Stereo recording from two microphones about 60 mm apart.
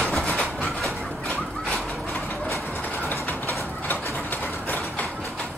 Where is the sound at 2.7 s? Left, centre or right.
Left.